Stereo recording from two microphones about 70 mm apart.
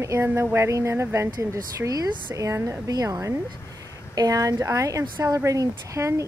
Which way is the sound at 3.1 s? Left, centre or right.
Right.